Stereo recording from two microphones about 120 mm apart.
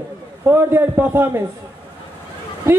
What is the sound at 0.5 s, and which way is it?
Speech, 20° right (ahead or behind).